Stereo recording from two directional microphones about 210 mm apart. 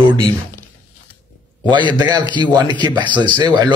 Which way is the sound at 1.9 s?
20° right (ahead or behind).